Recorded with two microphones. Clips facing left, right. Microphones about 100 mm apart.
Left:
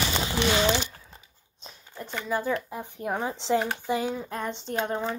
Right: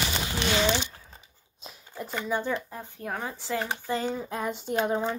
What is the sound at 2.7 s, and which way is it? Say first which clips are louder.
Speech: left 4 dB; 15° left (ahead or behind).